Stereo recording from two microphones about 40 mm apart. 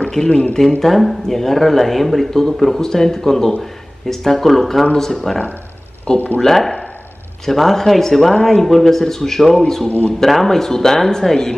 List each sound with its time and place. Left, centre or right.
0.1 s speech: centre
0.7 s speech: centre
6.1 s speech: left
6.4 s speech: centre